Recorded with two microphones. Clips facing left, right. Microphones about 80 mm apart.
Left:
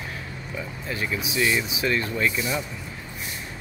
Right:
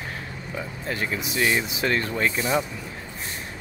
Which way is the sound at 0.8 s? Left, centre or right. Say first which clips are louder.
Right 1 dB; right.